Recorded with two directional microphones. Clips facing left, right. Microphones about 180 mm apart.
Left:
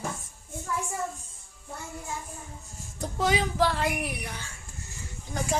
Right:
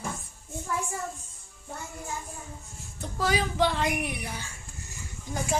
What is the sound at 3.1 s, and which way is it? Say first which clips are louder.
Speech: left 1 dB; 20° left (ahead or behind).